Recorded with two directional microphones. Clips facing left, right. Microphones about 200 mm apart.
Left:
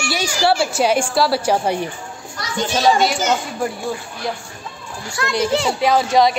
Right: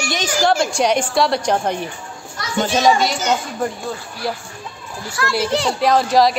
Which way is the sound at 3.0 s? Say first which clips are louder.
Left 1 dB; centre (ahead or behind).